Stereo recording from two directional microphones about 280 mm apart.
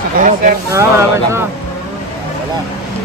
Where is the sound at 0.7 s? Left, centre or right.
Centre.